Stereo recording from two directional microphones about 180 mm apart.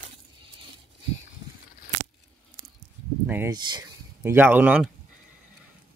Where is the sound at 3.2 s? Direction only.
10° right (ahead or behind).